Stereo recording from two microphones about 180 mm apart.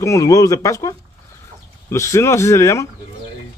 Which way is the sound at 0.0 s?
20° left (ahead or behind).